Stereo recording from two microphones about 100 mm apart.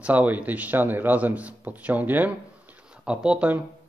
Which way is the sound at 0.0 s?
15° right (ahead or behind).